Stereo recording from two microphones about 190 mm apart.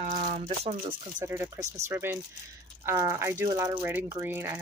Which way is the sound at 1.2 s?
15° right (ahead or behind).